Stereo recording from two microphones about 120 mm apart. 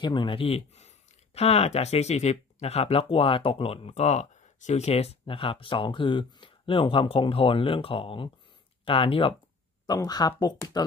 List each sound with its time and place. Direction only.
0.0 s speech: 40° left (ahead or behind)
9.8 s speech: 35° left (ahead or behind)